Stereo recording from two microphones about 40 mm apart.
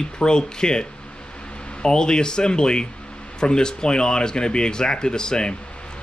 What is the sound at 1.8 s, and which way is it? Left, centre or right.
Speech, centre.